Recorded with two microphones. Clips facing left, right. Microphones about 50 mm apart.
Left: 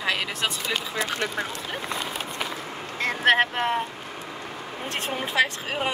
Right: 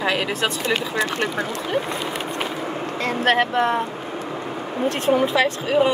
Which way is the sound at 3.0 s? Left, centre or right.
Left.